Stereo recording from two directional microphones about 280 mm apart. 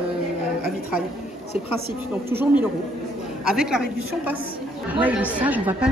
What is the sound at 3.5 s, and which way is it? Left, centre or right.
Speech, centre.